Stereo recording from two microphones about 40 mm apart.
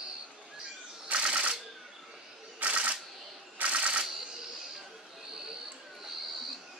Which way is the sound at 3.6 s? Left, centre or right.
Right.